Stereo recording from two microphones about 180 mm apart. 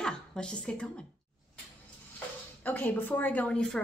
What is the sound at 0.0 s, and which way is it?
Speech, 5° left (ahead or behind).